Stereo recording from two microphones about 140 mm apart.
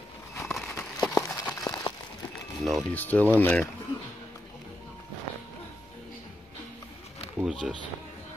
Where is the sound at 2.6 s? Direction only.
Centre (ahead or behind).